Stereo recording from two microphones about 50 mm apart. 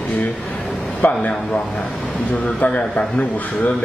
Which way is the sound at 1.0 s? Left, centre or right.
Left.